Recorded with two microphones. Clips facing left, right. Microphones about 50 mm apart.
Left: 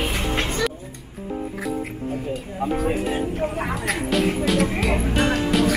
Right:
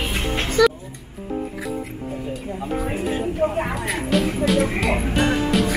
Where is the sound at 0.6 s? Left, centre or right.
Right.